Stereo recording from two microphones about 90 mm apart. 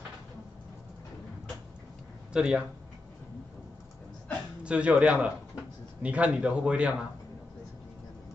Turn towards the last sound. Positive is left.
turn(degrees=-10)  # may be behind; listen again after turning